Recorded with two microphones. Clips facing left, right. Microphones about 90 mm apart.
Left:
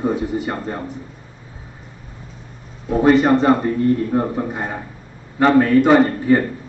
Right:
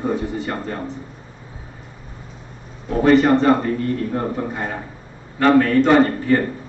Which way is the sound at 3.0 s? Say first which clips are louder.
Even; 20° left (ahead or behind).